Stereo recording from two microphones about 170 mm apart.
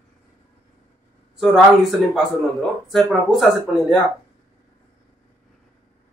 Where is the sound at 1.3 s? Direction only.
Centre (ahead or behind).